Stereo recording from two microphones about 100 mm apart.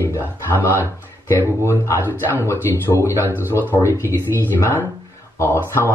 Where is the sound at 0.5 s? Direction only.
20° left (ahead or behind).